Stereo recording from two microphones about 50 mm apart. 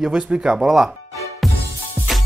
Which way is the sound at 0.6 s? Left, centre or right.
Centre.